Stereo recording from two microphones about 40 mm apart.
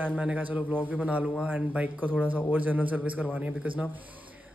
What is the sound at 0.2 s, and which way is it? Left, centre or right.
Speech, right.